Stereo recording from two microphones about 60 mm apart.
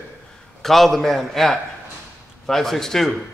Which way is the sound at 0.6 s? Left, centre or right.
Centre.